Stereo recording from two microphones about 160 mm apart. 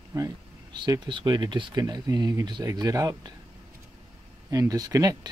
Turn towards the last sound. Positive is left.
turn(degrees=-25)  # may be behind; listen again after turning